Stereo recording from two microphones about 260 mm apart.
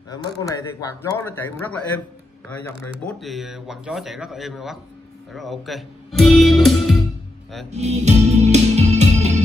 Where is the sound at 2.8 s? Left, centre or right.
Centre.